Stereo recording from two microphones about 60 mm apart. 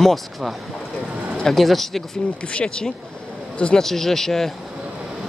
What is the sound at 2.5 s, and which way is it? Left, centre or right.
Speech, left.